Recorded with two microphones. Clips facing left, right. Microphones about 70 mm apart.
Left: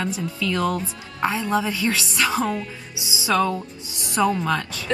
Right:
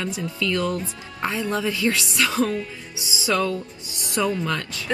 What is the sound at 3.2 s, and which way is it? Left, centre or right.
Speech, left.